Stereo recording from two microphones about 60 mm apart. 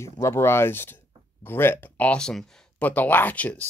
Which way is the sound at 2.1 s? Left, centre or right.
Centre.